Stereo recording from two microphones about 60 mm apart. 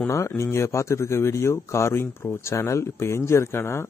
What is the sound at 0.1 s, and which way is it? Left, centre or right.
A man's voice, left.